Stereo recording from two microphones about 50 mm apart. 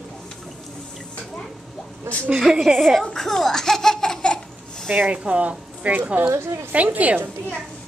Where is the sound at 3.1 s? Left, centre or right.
Centre.